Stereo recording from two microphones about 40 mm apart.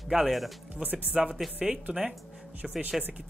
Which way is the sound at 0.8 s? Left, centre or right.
Right.